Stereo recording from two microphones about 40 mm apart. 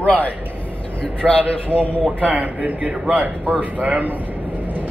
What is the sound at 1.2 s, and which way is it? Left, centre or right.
Speech, centre.